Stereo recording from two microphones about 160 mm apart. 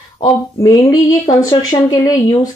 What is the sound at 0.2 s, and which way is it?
A woman's voice, 25° left (ahead or behind).